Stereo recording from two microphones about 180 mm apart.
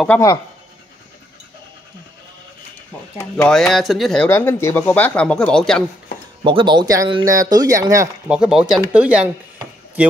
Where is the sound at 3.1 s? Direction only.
10° left (ahead or behind).